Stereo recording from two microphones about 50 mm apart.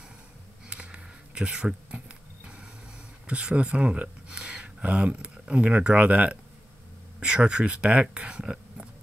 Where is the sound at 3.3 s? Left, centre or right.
Right.